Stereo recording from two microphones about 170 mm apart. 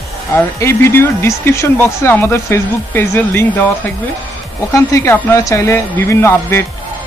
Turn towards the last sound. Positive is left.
turn(degrees=15)  # may be behind; listen again after turning